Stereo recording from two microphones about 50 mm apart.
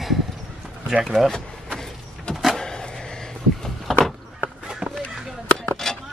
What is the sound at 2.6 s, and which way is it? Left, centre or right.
Vehicle, centre.